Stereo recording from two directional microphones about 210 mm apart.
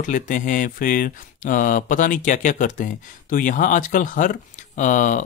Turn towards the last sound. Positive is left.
turn(degrees=35)  # may be behind; listen again after turning